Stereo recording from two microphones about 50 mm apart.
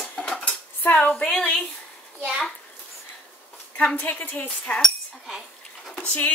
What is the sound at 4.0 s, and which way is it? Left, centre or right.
Speech, left.